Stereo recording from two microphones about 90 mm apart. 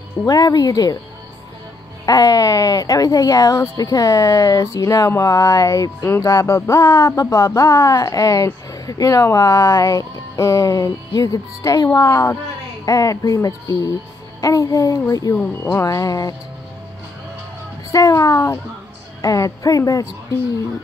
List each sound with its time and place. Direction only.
0.3 s speech: 45° left (ahead or behind)
2.0 s speech: 45° left (ahead or behind)
15.3 s speech: 20° left (ahead or behind)
15.8 s speech: 40° left (ahead or behind)
17.9 s speech: 40° left (ahead or behind)